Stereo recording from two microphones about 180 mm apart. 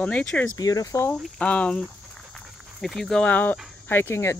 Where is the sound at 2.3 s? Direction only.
Centre (ahead or behind).